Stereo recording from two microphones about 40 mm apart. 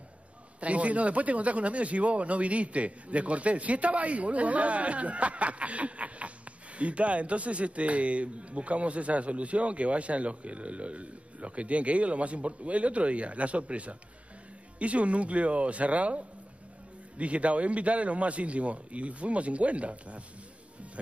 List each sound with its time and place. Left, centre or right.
0.6 s speech: right